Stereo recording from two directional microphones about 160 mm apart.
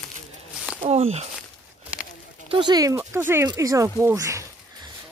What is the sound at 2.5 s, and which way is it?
Speech, 25° right (ahead or behind).